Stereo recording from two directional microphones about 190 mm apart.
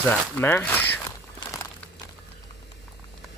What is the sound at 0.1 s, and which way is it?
Speech, 10° left (ahead or behind).